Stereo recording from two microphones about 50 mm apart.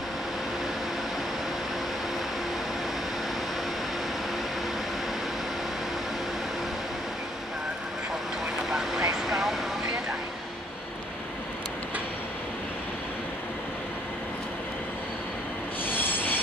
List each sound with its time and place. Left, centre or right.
8.6 s vehicle: centre
15.8 s train wheels squealing: left